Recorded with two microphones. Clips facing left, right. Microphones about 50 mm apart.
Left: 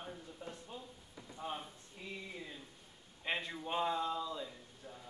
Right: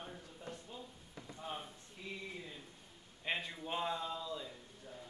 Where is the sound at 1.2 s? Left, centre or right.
Right.